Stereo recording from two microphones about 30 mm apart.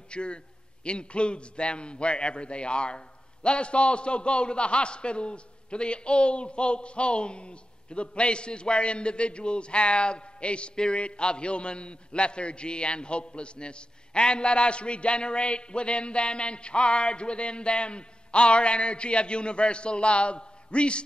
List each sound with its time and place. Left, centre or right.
0.1 s a man's voice: left